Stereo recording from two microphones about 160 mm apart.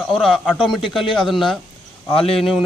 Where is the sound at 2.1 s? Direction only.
35° left (ahead or behind).